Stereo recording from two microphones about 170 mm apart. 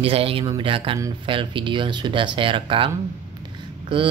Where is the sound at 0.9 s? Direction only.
20° right (ahead or behind).